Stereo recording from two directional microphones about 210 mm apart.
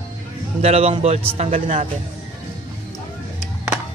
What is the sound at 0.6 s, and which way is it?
A man's voice, 30° right (ahead or behind).